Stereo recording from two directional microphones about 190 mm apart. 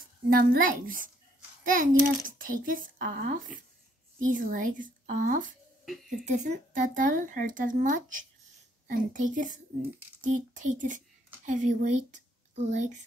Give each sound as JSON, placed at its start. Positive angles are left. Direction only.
{"t": 0.3, "sound": "a child's voice", "side_deg": -50}
{"t": 5.9, "sound": "speech", "side_deg": 0}
{"t": 6.2, "sound": "a child's voice", "side_deg": -40}